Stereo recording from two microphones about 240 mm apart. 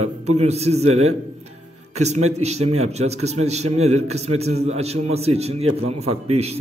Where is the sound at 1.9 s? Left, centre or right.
Right.